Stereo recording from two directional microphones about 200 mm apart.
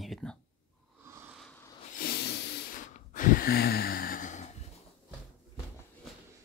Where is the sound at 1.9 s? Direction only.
50° left (ahead or behind).